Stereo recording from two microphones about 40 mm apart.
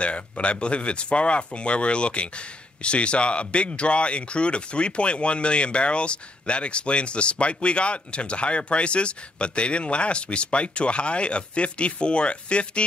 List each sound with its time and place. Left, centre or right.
0.0 s speech: left